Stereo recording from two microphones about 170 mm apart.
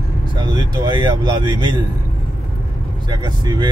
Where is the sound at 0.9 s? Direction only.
25° right (ahead or behind).